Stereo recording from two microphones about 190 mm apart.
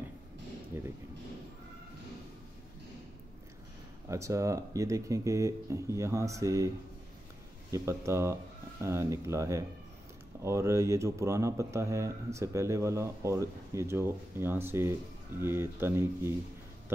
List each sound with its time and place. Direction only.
4.1 s speech: 15° right (ahead or behind)
7.7 s speech: 15° right (ahead or behind)